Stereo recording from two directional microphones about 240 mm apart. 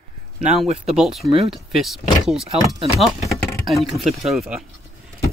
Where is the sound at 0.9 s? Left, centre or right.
Centre.